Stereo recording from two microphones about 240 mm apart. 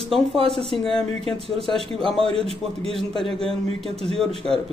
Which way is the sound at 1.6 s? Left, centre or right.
Centre.